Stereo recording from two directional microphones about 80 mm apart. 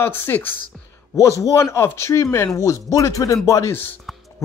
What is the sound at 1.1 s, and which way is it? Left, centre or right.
Speech, left.